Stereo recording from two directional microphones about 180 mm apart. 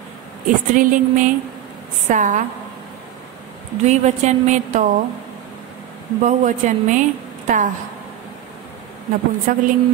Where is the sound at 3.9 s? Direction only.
40° right (ahead or behind).